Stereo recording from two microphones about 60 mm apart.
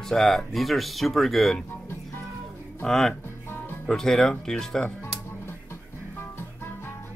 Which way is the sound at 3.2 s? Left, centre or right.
Left.